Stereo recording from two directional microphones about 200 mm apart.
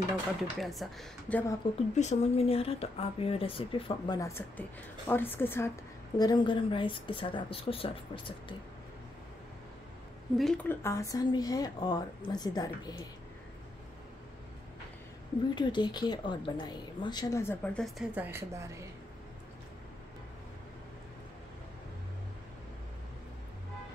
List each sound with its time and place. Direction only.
0.4 s a woman's voice: centre (ahead or behind)
1.6 s speech: 25° left (ahead or behind)
10.3 s speech: centre (ahead or behind); by 13.0 s 20° left (ahead or behind)
15.5 s speech: 20° left (ahead or behind)
17.8 s a woman's voice: 5° right (ahead or behind)